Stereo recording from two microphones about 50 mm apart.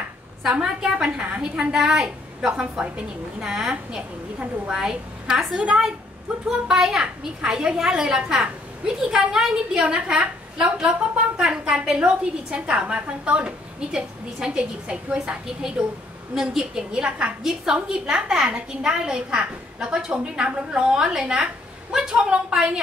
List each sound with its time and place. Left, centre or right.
0.4 s a woman's voice: centre